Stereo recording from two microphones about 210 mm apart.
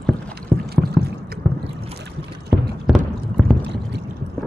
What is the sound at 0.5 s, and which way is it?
Rowboat, 10° right (ahead or behind).